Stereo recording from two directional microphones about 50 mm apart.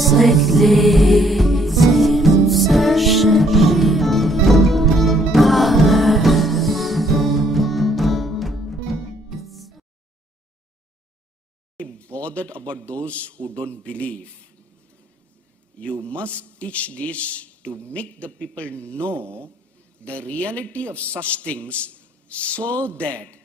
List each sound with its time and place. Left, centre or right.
0.0 s music: centre
11.7 s a sound: left
12.8 s a man's voice: left
15.8 s a man's voice: left
19.1 s speech: right
20.0 s a man's voice: left